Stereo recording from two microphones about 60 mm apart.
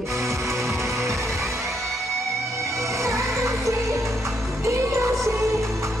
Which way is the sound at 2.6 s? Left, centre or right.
Right.